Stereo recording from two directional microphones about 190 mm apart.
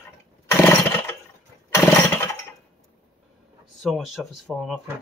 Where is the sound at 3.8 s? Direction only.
Centre (ahead or behind).